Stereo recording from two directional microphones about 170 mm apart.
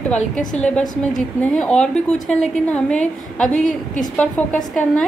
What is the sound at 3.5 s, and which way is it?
Speech, 50° left (ahead or behind).